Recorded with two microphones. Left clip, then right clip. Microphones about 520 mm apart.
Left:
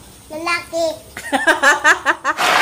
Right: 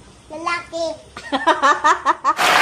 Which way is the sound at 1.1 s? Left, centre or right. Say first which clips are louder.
Left 1 dB; right.